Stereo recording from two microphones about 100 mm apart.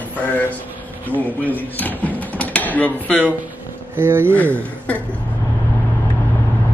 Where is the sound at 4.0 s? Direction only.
20° right (ahead or behind).